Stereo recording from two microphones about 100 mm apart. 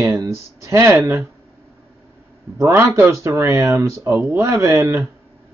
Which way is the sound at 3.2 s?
30° right (ahead or behind).